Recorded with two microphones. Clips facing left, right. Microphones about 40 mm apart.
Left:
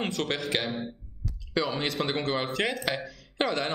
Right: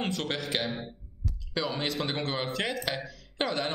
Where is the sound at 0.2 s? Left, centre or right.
Centre.